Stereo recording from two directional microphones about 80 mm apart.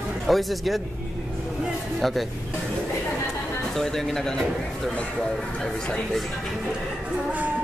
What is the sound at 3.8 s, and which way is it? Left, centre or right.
Speech, centre.